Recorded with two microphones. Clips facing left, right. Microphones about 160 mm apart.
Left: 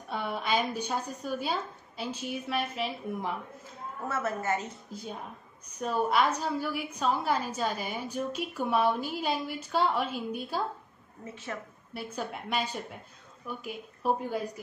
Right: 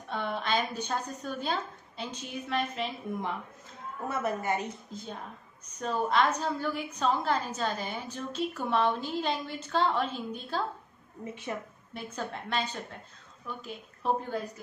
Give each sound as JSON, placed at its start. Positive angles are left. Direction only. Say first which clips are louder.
{"t": 0.1, "sound": "a woman's voice", "louder": "even", "side_deg": 5}
{"t": 4.1, "sound": "a woman's voice", "louder": "even", "side_deg": -15}
{"t": 4.9, "sound": "a woman's voice", "louder": "left 1 dB", "side_deg": 10}
{"t": 11.5, "sound": "a woman's voice", "louder": "right 2 dB", "side_deg": -20}
{"t": 11.9, "sound": "a woman's voice", "louder": "left 1 dB", "side_deg": 10}